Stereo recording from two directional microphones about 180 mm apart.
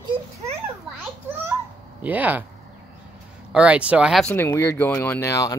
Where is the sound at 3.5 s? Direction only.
5° right (ahead or behind).